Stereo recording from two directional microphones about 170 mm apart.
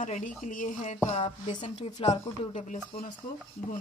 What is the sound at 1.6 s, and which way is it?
Speech, 35° left (ahead or behind).